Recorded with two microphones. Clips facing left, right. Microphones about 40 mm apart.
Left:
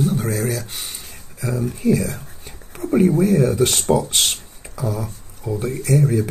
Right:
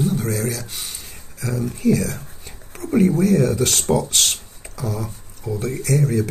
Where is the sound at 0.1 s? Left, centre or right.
Left.